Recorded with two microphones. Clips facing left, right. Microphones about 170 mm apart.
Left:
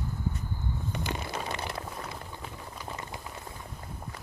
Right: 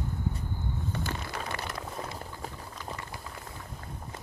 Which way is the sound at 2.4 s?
40° right (ahead or behind).